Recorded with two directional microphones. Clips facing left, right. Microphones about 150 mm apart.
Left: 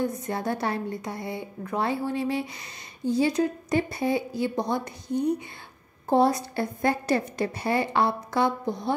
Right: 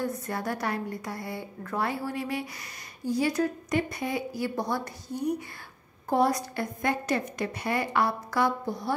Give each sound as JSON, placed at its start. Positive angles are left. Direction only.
{"t": 0.0, "sound": "a woman's voice", "side_deg": 25}